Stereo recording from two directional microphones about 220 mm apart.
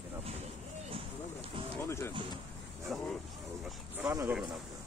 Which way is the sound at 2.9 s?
5° right (ahead or behind).